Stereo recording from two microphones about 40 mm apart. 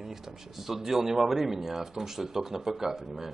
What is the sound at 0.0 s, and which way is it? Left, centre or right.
A man's voice, centre.